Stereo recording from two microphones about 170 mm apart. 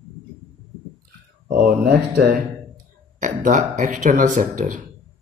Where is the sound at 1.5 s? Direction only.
60° right (ahead or behind).